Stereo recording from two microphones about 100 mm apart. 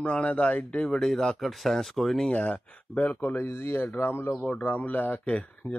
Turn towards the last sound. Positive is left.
turn(degrees=10)  # may be behind; listen again after turning